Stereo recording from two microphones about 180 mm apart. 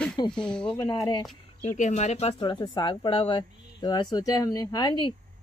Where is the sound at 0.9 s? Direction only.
25° left (ahead or behind).